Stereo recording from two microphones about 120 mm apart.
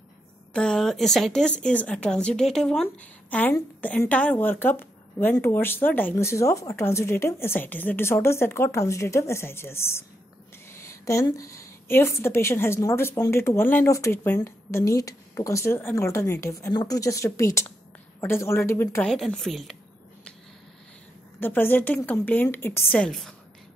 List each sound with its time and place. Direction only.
0.5 s a woman's voice: 5° left (ahead or behind); by 10.0 s 20° left (ahead or behind)
10.7 s a sound: 25° left (ahead or behind)
11.2 s speech: 30° left (ahead or behind)
19.0 s a woman's voice: centre (ahead or behind)
21.4 s a woman's voice: 15° left (ahead or behind)
23.0 s a woman's voice: 5° left (ahead or behind)